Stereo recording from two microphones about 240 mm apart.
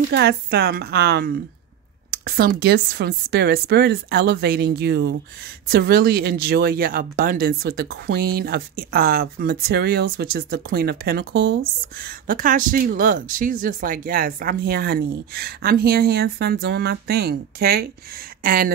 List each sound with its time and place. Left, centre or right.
0.1 s speech: right